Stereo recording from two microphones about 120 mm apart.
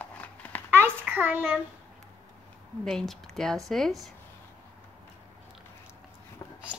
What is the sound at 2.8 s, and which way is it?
Speech, 5° left (ahead or behind).